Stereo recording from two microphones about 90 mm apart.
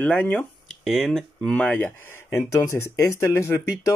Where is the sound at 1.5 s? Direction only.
15° left (ahead or behind).